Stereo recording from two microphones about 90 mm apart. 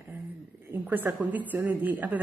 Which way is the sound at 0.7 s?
20° right (ahead or behind).